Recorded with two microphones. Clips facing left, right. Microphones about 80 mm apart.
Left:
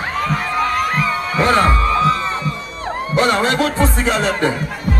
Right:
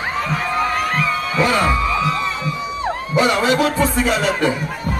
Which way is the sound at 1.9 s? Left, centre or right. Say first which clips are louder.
Left 4 dB; left.